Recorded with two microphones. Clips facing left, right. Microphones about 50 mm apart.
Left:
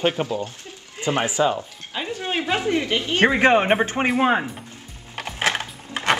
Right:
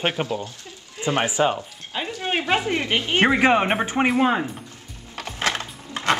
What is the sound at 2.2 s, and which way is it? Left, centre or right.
A woman's voice, right.